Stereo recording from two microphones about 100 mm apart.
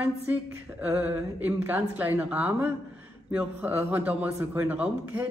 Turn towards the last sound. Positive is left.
turn(degrees=-15)  # may be behind; listen again after turning